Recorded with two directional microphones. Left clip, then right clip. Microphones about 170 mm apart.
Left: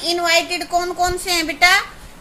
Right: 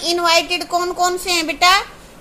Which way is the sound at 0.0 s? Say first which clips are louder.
Right 2 dB; 30° right (ahead or behind).